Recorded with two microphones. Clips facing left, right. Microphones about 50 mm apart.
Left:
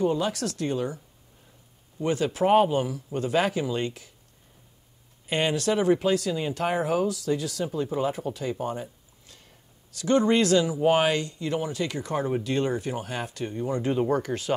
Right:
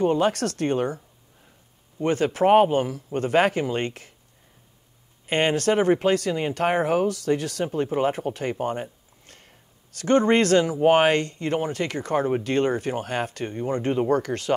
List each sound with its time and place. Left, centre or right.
0.0 s speech: right
2.0 s speech: right
5.2 s speech: right